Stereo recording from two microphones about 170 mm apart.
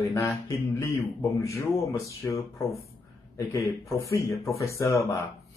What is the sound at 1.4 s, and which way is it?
Speech, 20° left (ahead or behind).